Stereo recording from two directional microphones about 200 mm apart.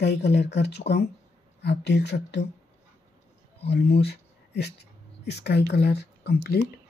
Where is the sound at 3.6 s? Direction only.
55° left (ahead or behind).